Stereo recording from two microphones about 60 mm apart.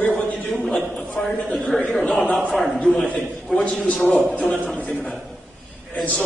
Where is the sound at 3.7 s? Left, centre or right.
Left.